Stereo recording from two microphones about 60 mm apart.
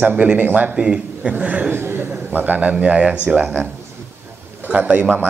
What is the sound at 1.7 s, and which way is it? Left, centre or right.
A man's voice, right.